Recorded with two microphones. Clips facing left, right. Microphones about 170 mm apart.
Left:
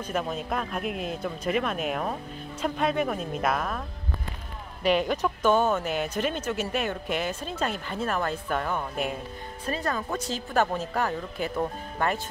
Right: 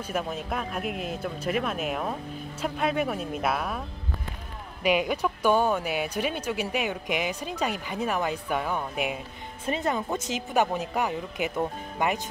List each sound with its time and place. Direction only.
0.0 s speech: 5° right (ahead or behind)
4.8 s speech: 10° right (ahead or behind)
9.7 s speech: 20° right (ahead or behind)